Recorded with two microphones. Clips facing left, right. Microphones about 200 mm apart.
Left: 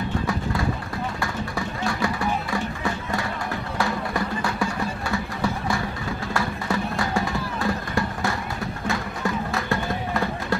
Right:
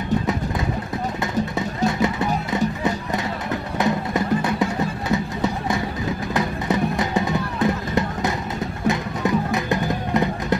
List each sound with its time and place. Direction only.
1.9 s music: 20° right (ahead or behind)
3.7 s music: 20° right (ahead or behind)